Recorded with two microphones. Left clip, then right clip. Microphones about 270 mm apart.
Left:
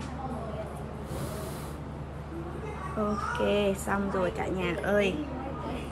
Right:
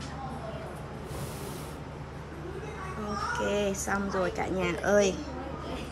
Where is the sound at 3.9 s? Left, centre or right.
Centre.